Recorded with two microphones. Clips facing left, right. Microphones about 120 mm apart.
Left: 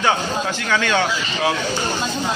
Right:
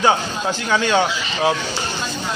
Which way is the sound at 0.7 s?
20° right (ahead or behind).